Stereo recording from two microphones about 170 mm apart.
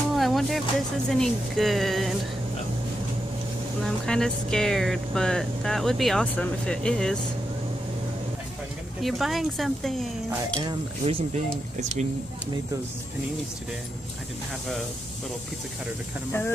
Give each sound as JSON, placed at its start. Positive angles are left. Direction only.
{"t": 0.1, "sound": "speech", "side_deg": 0}
{"t": 3.8, "sound": "speech", "side_deg": 5}
{"t": 9.0, "sound": "speech", "side_deg": 0}
{"t": 10.7, "sound": "speech", "side_deg": -40}